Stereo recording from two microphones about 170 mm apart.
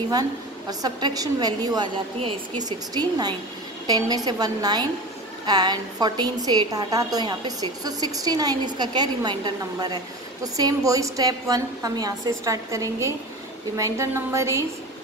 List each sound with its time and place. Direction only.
0.1 s a woman's voice: 20° right (ahead or behind)